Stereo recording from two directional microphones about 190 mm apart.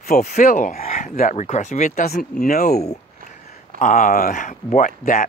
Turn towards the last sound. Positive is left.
turn(degrees=40)  # may be behind; listen again after turning